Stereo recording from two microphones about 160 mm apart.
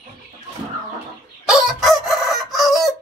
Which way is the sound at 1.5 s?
Centre (ahead or behind).